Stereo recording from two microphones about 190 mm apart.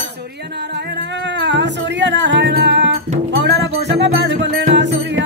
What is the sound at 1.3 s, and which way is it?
Music, 70° right (ahead or behind).